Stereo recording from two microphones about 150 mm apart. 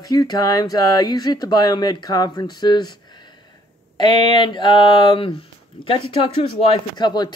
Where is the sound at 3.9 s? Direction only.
30° left (ahead or behind).